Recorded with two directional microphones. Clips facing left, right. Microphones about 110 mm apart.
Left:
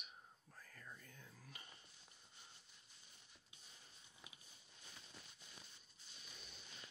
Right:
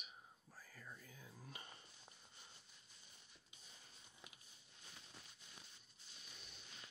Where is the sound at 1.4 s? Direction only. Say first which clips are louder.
Right 8 dB; 30° right (ahead or behind).